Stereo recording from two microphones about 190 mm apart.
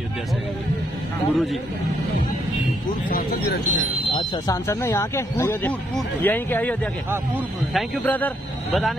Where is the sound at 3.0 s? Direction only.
55° left (ahead or behind).